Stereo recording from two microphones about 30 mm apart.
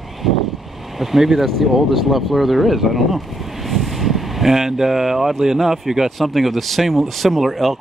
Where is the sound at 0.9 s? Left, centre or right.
Centre.